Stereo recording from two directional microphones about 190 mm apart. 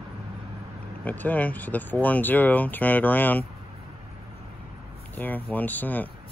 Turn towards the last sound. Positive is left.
turn(degrees=10)  # may be behind; listen again after turning